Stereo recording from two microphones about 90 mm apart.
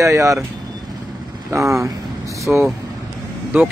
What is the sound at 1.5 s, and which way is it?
Speech, 35° right (ahead or behind).